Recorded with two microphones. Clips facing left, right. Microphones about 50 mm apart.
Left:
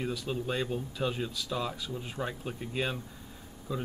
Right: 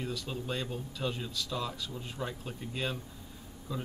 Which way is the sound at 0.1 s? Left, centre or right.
Centre.